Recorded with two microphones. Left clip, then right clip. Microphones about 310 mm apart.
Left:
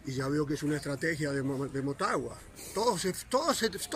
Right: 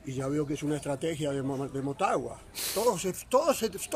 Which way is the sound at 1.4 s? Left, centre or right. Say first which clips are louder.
Right 1 dB; centre.